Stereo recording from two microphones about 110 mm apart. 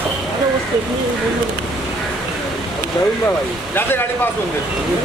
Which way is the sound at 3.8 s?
20° left (ahead or behind).